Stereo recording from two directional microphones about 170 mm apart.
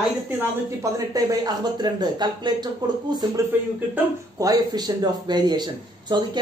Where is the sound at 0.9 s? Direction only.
20° right (ahead or behind).